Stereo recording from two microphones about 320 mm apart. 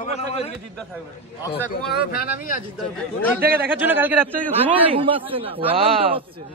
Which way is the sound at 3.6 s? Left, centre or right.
Centre.